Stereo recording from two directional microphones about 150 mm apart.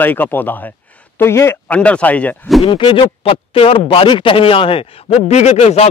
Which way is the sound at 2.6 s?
35° left (ahead or behind).